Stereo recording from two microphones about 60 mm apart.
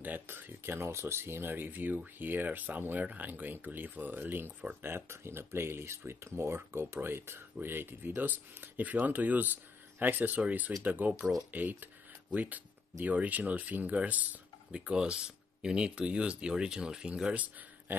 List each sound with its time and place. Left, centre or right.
0.0 s speech: right
14.7 s speech: centre